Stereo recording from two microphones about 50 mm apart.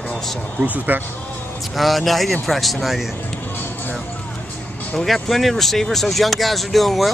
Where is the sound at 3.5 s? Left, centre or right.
Left.